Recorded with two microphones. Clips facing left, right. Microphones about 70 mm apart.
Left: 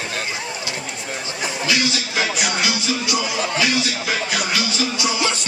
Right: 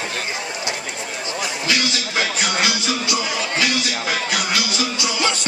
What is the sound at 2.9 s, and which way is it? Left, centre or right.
Music, right.